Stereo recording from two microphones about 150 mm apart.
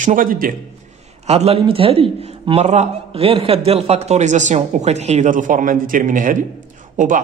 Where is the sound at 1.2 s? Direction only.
45° right (ahead or behind).